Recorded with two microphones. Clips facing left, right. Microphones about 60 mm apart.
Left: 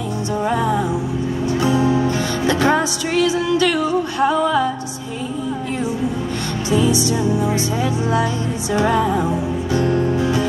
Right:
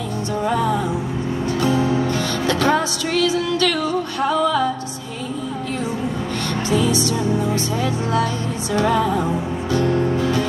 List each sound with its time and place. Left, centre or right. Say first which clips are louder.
0.4 s music: left 1 dB; centre
2.0 s music: left 2 dB; centre
6.7 s music: left 3 dB; centre